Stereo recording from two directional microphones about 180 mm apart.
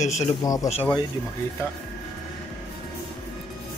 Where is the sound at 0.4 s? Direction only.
20° left (ahead or behind).